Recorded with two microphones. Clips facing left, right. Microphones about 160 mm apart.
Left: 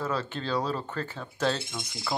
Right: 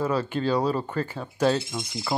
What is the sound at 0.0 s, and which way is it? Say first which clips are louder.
Speech: right 6 dB; 10° right (ahead or behind).